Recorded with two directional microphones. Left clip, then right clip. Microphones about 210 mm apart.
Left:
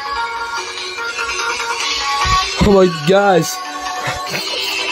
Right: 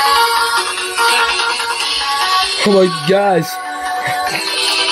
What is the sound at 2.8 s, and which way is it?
Speech, 15° left (ahead or behind).